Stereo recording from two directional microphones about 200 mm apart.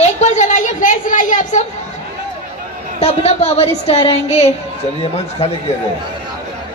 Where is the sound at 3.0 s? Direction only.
30° left (ahead or behind).